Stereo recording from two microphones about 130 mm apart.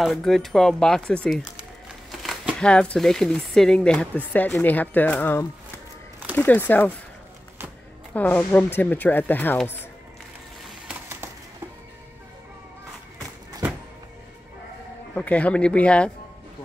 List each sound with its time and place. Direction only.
0.0 s speech: centre (ahead or behind)
2.6 s speech: 10° left (ahead or behind)
8.1 s speech: 15° left (ahead or behind)
10.9 s bird: 15° right (ahead or behind)
15.1 s speech: 10° left (ahead or behind)